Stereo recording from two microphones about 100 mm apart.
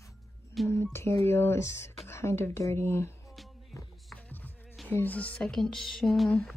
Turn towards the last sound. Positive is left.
turn(degrees=0)  # may be behind; listen again after turning